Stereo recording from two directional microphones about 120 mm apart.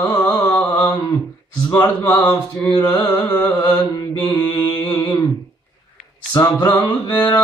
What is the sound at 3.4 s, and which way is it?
Music, 15° left (ahead or behind).